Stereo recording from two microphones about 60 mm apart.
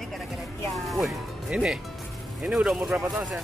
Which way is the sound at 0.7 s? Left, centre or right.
Centre.